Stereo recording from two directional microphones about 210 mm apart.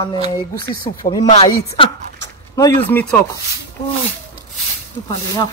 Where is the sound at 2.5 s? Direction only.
10° left (ahead or behind).